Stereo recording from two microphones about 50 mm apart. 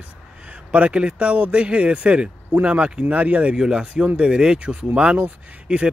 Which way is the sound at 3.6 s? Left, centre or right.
Centre.